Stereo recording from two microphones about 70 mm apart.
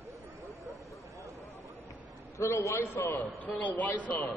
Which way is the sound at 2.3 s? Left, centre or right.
Left.